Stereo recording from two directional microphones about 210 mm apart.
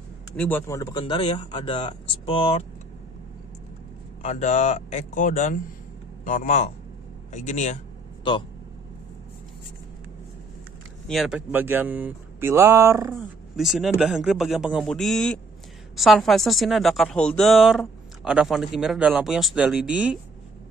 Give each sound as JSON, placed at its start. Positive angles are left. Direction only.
{"t": 0.4, "sound": "speech", "side_deg": 10}
{"t": 4.2, "sound": "speech", "side_deg": 30}
{"t": 11.1, "sound": "speech", "side_deg": 0}
{"t": 13.6, "sound": "speech", "side_deg": 0}